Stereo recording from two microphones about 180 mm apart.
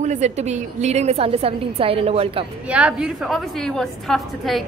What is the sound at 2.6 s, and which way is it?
A woman's voice, 5° right (ahead or behind).